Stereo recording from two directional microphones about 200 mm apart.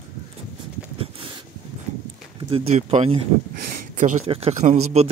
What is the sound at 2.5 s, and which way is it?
Speech, 35° right (ahead or behind).